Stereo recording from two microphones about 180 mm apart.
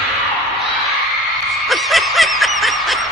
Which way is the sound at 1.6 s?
Centre (ahead or behind).